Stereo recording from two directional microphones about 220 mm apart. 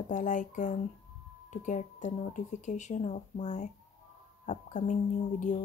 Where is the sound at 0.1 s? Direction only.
35° left (ahead or behind).